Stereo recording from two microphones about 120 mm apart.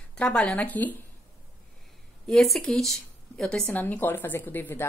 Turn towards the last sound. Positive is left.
turn(degrees=20)  # may be behind; listen again after turning